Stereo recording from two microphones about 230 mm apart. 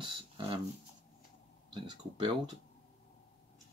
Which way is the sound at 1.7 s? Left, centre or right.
Right.